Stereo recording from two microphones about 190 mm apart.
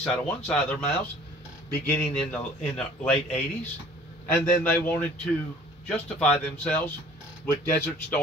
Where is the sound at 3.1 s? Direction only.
30° left (ahead or behind).